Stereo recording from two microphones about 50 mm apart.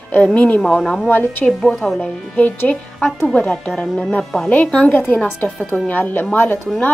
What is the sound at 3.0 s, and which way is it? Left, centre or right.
Speech, centre.